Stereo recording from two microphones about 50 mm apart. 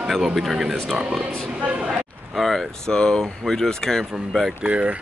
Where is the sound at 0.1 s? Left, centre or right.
Centre.